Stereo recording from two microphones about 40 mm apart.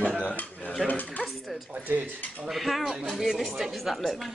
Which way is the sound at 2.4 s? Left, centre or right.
Centre.